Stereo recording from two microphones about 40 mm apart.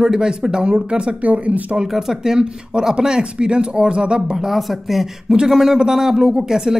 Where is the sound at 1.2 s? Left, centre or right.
Right.